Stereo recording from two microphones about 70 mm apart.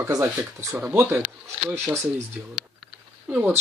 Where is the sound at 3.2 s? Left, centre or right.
Right.